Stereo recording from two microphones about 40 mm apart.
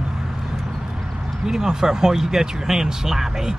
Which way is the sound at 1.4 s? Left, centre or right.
Centre.